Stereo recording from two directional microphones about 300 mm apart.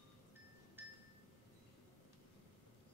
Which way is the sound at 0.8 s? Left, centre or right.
Centre.